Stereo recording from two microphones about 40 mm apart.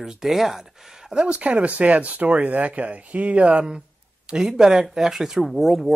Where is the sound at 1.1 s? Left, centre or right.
Right; by 5.9 s centre.